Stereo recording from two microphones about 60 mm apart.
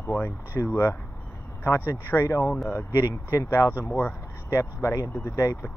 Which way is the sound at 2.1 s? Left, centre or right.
Left.